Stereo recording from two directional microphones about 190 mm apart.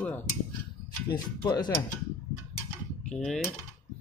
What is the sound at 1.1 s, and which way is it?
Speech, 25° left (ahead or behind).